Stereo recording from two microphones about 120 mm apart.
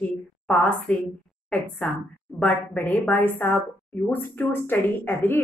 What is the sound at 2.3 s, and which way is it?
A woman's voice, 10° left (ahead or behind).